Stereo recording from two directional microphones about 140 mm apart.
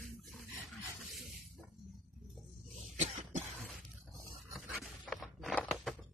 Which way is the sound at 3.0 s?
55° right (ahead or behind).